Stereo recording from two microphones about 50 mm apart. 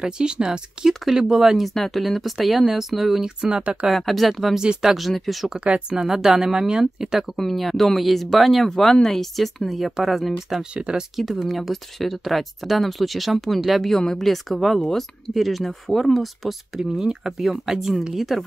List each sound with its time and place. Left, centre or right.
0.0 s speech: centre
1.7 s speech: centre
3.3 s speech: centre
3.9 s speech: centre
4.6 s speech: centre
4.9 s speech: centre
5.6 s a woman's voice: right
5.9 s speech: centre
7.3 s speech: centre
10.7 s a woman's voice: right
11.0 s speech: centre
13.9 s speech: centre
15.3 s speech: centre